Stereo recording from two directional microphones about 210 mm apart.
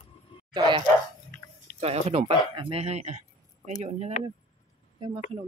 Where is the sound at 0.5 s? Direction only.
25° right (ahead or behind).